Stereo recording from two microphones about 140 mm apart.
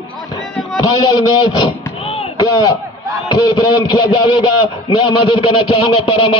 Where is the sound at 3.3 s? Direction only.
30° left (ahead or behind).